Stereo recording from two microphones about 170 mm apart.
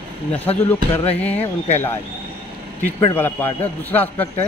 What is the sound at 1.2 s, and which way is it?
Speech, 40° left (ahead or behind).